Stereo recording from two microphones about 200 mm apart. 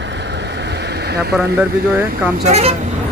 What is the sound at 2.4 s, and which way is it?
Speech, 35° right (ahead or behind).